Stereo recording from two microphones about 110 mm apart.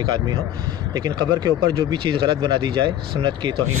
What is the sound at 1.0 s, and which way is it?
Speech, 35° right (ahead or behind).